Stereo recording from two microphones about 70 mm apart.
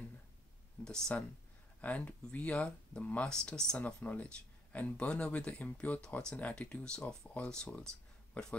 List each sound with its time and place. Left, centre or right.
0.8 s speech: centre
3.4 s speech: centre
3.7 s speech: left